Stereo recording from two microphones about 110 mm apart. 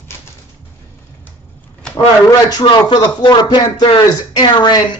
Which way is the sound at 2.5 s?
40° left (ahead or behind).